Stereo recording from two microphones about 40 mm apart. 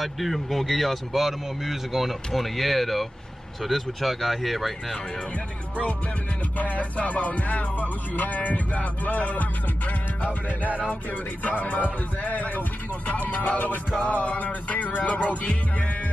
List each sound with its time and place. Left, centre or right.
0.0 s speech: centre
6.6 s music: left
11.4 s speech: left
14.0 s music: left